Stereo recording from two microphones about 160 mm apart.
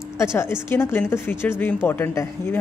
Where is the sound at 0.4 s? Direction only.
15° left (ahead or behind).